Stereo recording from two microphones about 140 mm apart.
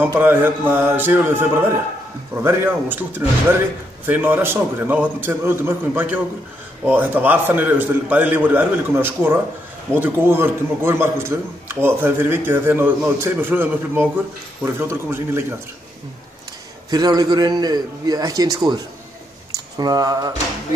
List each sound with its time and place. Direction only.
0.0 s a man's voice: 15° right (ahead or behind)
16.9 s a man's voice: 30° right (ahead or behind)
19.5 s a sound: 25° right (ahead or behind)